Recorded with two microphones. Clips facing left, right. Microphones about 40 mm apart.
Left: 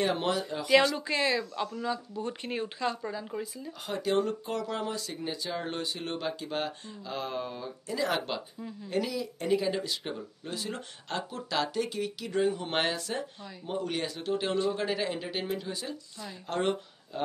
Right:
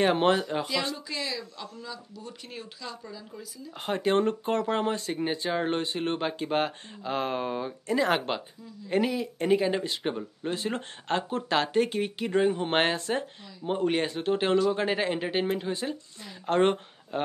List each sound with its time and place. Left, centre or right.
0.0 s speech: right
0.9 s speech: left
3.8 s speech: right